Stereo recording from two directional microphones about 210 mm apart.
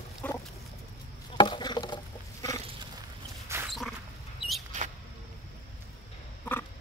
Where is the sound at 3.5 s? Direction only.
10° right (ahead or behind).